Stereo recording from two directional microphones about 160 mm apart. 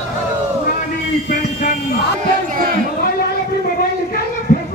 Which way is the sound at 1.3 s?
55° left (ahead or behind).